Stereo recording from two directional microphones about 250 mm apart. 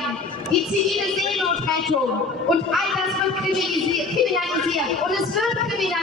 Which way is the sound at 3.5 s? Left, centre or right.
Centre.